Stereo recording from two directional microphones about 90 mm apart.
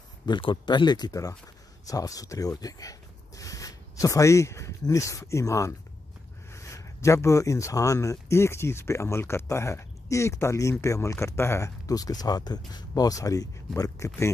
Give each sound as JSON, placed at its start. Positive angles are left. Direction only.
{"t": 0.3, "sound": "speech", "side_deg": 60}